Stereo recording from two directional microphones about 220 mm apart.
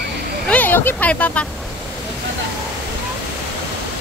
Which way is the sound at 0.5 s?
10° left (ahead or behind).